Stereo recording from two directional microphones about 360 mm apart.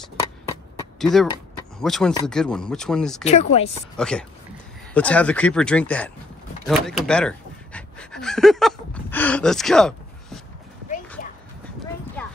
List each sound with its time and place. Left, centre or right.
0.9 s speech: centre
3.3 s speech: centre
3.9 s speech: centre
6.7 s a sound: centre
12.2 s horse: centre